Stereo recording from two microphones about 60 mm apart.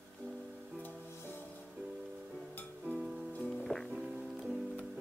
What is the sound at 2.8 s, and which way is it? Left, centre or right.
Music, right.